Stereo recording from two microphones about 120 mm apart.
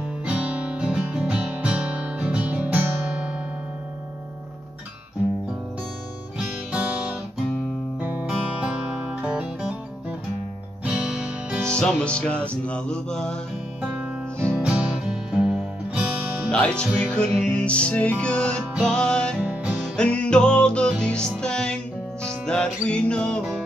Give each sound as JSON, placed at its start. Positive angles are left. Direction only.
{"t": 0.2, "sound": "music", "side_deg": -10}
{"t": 6.3, "sound": "guitar", "side_deg": -10}
{"t": 8.0, "sound": "music", "side_deg": -10}
{"t": 10.9, "sound": "music", "side_deg": -10}
{"t": 11.6, "sound": "music", "side_deg": 5}
{"t": 14.6, "sound": "music", "side_deg": -10}
{"t": 16.4, "sound": "music", "side_deg": 10}
{"t": 19.4, "sound": "music", "side_deg": -10}
{"t": 19.7, "sound": "music", "side_deg": 5}